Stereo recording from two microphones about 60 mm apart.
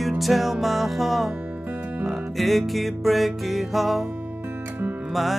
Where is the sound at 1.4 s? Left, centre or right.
Right.